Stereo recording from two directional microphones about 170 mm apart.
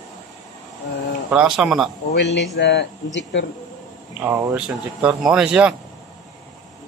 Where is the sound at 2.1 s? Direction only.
90° left.